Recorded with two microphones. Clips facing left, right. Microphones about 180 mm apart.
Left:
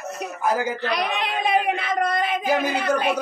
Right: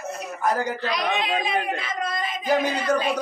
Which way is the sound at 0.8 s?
60° left (ahead or behind).